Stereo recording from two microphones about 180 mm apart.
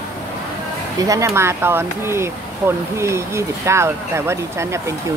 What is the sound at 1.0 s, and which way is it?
Speech, 15° right (ahead or behind).